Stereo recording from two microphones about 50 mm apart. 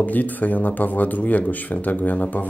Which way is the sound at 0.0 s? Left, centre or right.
Left.